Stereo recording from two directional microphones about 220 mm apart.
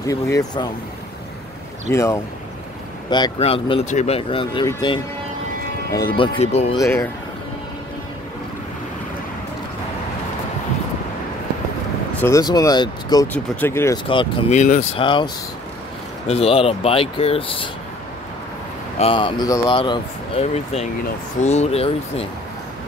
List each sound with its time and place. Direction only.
0.0 s speech: 15° left (ahead or behind)
1.9 s speech: 15° left (ahead or behind)
5.9 s speech: 45° left (ahead or behind)
6.1 s speech: 25° left (ahead or behind)
6.8 s speech: 15° left (ahead or behind)
12.2 s speech: 15° left (ahead or behind)
14.0 s speech: 25° left (ahead or behind)
16.3 s speech: 25° left (ahead or behind)
18.9 s speech: 25° left (ahead or behind)